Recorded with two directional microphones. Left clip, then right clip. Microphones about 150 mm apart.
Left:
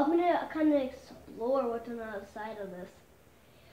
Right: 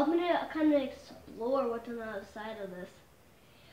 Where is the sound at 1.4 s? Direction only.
15° right (ahead or behind).